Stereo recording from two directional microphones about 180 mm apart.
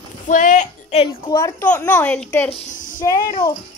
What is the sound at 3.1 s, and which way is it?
Speech, 25° left (ahead or behind).